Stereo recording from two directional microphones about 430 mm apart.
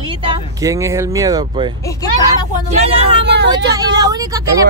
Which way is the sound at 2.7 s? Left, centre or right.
Centre.